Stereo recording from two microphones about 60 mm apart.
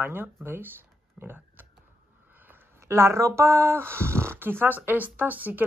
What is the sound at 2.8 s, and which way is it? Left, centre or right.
Speech, right.